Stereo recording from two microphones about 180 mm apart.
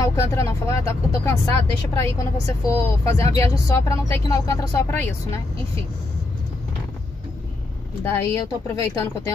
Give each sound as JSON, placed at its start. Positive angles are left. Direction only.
{"t": 0.0, "sound": "speech", "side_deg": 15}
{"t": 8.0, "sound": "speech", "side_deg": 15}